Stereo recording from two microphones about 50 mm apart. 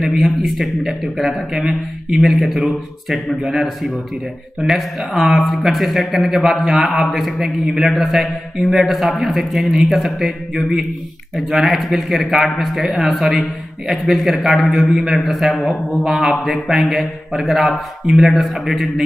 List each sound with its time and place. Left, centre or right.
0.0 s a man's voice: centre
2.4 s a man's voice: centre
15.7 s a man's voice: centre